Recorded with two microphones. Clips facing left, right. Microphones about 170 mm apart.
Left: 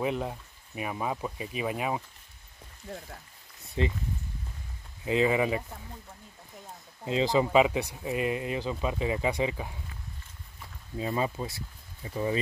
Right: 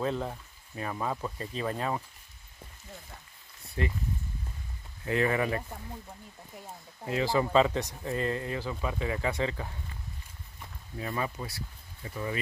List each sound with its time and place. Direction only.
0.0 s speech: 15° left (ahead or behind)
3.8 s speech: 20° left (ahead or behind)
5.0 s speech: 15° left (ahead or behind)
7.1 s speech: 20° left (ahead or behind)
11.0 s speech: 20° left (ahead or behind)